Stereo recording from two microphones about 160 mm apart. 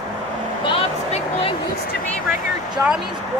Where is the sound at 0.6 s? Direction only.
35° left (ahead or behind).